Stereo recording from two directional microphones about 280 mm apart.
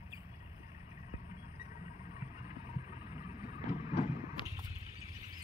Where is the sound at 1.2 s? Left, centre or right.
Left.